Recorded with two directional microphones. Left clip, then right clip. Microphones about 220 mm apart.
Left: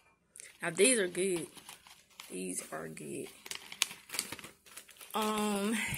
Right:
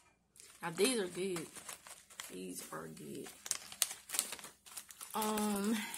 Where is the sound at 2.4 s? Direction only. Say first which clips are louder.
Left 7 dB; 15° left (ahead or behind).